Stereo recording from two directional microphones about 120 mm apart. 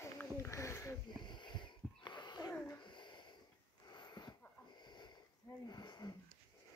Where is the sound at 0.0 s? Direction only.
20° left (ahead or behind).